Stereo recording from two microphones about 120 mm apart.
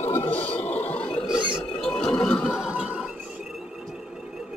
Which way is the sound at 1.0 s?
55° left (ahead or behind).